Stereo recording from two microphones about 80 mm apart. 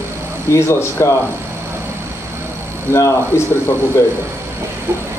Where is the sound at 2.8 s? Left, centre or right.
Left.